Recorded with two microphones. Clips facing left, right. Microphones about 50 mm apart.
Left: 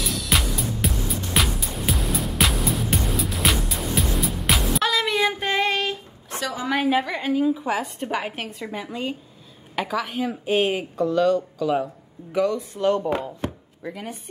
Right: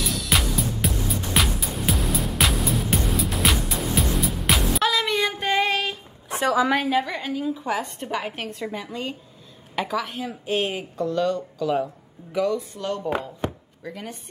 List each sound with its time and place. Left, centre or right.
0.0 s music: centre
6.7 s a woman's voice: centre
12.7 s speech: left
13.8 s a woman's voice: centre